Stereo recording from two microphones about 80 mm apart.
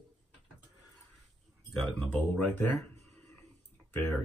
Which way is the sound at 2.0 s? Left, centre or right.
Centre.